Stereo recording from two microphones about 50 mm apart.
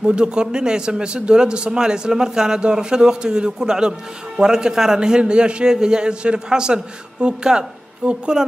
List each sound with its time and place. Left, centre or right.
0.0 s a man's voice: centre